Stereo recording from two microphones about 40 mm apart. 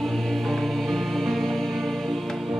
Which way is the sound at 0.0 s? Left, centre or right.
Centre.